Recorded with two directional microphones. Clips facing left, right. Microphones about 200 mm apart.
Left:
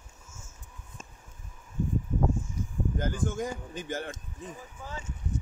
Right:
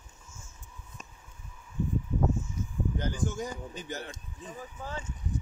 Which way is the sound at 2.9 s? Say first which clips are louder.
Left 3 dB; 50° left (ahead or behind).